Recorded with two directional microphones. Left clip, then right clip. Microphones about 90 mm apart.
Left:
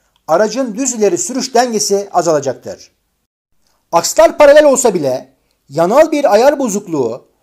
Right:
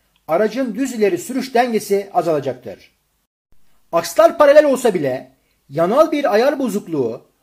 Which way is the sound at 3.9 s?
35° left (ahead or behind).